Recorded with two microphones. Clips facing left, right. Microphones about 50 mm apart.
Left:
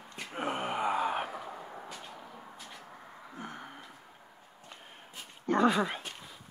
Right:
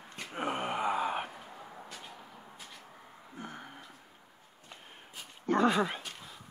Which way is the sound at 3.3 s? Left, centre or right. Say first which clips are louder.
Left 1 dB; centre.